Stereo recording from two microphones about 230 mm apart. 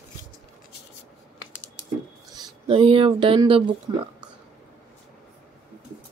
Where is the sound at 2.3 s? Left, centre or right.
Right.